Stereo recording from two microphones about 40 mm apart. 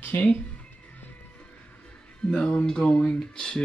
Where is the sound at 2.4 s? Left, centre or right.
Left.